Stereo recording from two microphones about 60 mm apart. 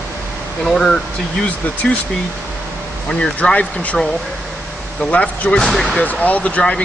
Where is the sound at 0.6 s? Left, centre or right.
Centre.